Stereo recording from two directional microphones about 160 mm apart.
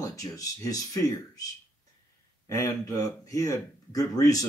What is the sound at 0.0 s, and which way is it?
Speech, 20° left (ahead or behind).